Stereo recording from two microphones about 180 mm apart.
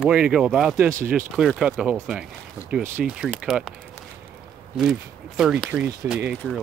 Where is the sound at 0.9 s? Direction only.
50° right (ahead or behind).